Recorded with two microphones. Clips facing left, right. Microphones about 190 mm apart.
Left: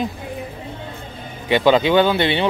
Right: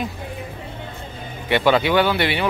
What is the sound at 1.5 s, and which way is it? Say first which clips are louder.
Speech: left 3 dB; 15° left (ahead or behind).